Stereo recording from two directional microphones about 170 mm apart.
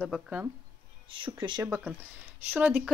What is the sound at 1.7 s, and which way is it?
Speech, 10° right (ahead or behind).